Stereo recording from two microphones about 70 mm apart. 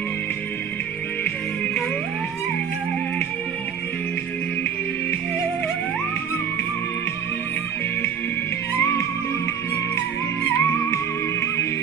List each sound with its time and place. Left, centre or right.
10.4 s music: left